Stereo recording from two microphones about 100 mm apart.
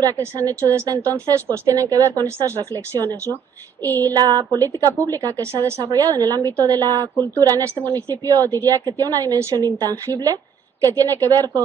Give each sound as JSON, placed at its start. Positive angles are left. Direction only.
{"t": 0.0, "sound": "a woman's voice", "side_deg": -35}
{"t": 2.9, "sound": "speech", "side_deg": 20}
{"t": 4.1, "sound": "a woman's voice", "side_deg": -40}
{"t": 8.5, "sound": "speech", "side_deg": 25}
{"t": 9.0, "sound": "a woman's voice", "side_deg": -40}